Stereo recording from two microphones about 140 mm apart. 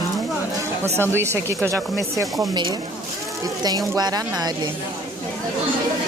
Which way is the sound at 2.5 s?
30° right (ahead or behind).